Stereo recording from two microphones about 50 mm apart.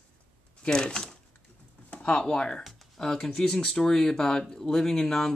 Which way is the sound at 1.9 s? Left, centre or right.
Left.